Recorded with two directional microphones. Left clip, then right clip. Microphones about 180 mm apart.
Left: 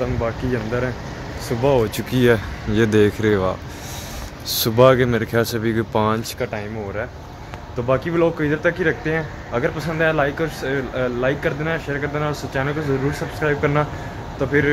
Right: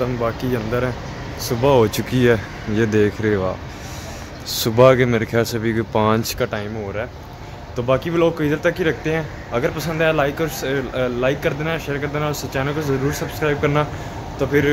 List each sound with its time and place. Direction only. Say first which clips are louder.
0.0 s speech: right 2 dB; 15° right (ahead or behind)
1.8 s speech: right 4 dB; 35° right (ahead or behind)
2.0 s speech: even; 5° right (ahead or behind)
2.7 s speech: left 1 dB; 10° left (ahead or behind)
4.5 s speech: right 1 dB; 5° right (ahead or behind)
6.2 s speech: right 3 dB; 50° right (ahead or behind)
7.7 s speech: right 1 dB; 5° right (ahead or behind)